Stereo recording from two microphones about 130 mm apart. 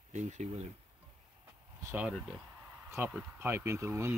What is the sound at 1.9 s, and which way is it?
Speech, 15° right (ahead or behind).